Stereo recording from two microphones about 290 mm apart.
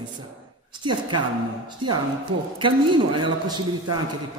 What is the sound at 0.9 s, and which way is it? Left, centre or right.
A man's voice, centre.